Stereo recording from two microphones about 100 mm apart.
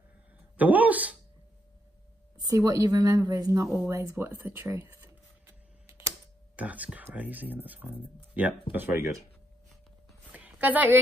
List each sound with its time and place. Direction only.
0.6 s speech: 15° right (ahead or behind)
2.3 s speech: 40° right (ahead or behind)
6.5 s speech: 15° right (ahead or behind)
10.3 s a sound: 15° right (ahead or behind)